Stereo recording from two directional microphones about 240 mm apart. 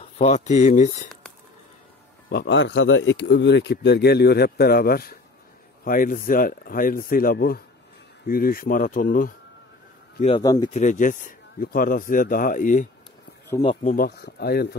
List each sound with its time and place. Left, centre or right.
0.2 s speech: left
2.2 s speech: left
10.2 s speech: centre
10.7 s speech: left
13.5 s speech: centre
13.8 s speech: left